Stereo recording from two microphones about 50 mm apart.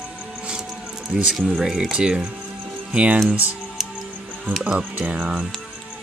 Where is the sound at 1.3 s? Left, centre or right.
Centre.